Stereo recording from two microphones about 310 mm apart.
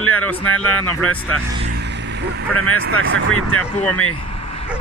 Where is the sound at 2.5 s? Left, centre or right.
Left.